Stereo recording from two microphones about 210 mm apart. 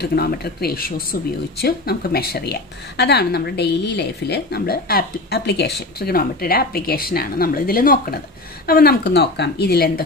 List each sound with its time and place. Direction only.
0.0 s a woman's voice: 45° left (ahead or behind)